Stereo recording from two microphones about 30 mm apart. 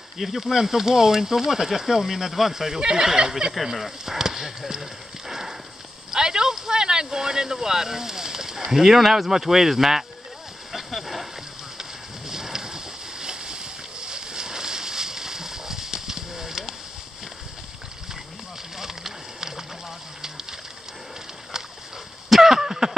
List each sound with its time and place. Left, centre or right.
0.2 s speech: centre
2.5 s speech: centre
6.0 s speech: right
10.9 s boat: centre
12.3 s boat: centre
18.8 s a sound: centre
22.3 s a sound: centre